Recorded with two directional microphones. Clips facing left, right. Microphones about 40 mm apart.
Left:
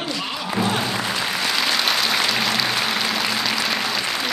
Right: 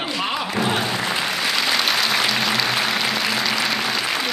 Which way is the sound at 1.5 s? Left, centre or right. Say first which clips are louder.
Even; centre.